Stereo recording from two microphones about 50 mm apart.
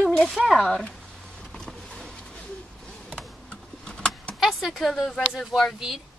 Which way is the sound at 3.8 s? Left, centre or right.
Centre.